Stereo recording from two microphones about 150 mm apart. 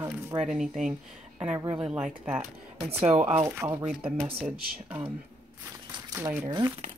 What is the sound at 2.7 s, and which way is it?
Speech, 40° right (ahead or behind).